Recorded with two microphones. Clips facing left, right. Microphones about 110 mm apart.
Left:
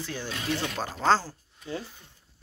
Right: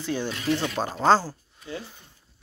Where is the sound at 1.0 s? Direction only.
15° right (ahead or behind).